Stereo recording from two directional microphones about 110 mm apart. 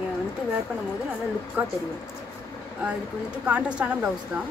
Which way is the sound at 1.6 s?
15° right (ahead or behind).